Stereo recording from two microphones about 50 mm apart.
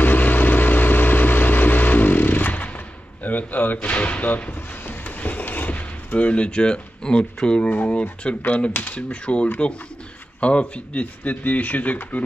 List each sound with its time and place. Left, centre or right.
0.0 s vehicle: left
3.3 s a sound: left; by 7.7 s centre
7.7 s speech: left